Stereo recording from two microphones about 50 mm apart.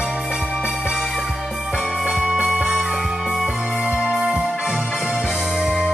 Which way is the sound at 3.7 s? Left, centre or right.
Centre.